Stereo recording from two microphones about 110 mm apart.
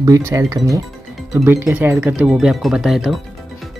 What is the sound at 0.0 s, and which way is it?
Speech, 25° right (ahead or behind).